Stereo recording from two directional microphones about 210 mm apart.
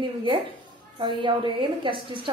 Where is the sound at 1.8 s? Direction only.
25° right (ahead or behind).